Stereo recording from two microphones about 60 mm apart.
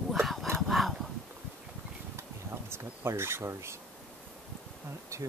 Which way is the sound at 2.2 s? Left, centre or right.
Right.